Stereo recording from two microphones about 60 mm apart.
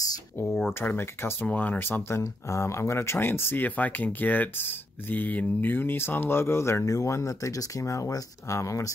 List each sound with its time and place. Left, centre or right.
0.7 s speech: left
2.2 s speech: left
3.6 s speech: left